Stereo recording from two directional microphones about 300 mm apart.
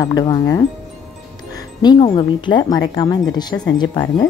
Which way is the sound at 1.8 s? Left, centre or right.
Centre.